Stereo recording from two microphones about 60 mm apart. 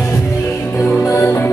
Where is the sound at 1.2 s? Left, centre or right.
Left.